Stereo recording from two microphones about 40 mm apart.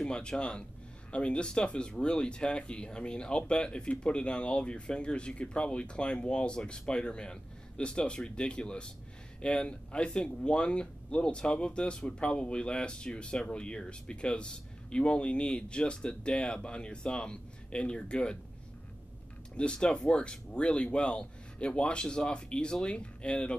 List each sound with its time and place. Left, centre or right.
0.0 s speech: left
19.5 s speech: left